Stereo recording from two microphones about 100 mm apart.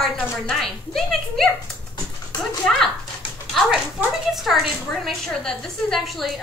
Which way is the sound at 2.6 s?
10° left (ahead or behind).